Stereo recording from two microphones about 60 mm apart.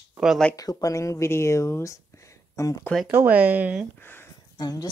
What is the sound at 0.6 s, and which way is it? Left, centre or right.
A woman's voice, left.